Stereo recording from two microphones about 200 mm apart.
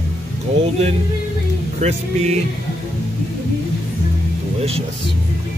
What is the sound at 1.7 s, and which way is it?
Speech, 35° right (ahead or behind).